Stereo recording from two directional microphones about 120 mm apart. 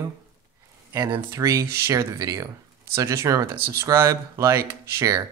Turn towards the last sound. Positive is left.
turn(degrees=-25)  # may be behind; listen again after turning